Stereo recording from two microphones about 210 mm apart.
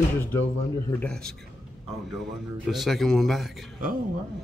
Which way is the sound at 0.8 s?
5° left (ahead or behind).